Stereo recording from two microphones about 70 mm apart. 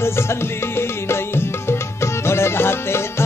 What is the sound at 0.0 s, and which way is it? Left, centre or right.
Music, left.